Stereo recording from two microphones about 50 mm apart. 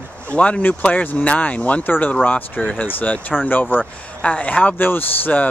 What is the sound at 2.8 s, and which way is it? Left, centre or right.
Speech, left.